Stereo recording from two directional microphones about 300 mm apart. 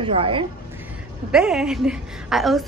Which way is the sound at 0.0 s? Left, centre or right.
Centre.